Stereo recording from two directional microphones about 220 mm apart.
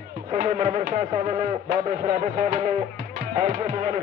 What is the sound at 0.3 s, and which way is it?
A man's voice, 30° right (ahead or behind).